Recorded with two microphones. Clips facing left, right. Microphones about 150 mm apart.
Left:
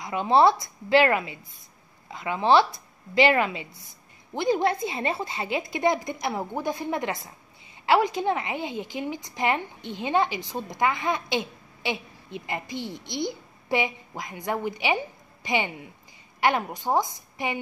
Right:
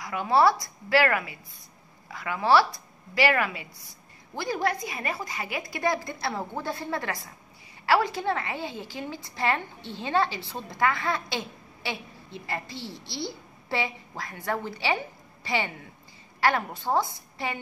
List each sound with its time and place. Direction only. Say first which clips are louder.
0.0 s a woman's voice: left 2 dB; 20° left (ahead or behind)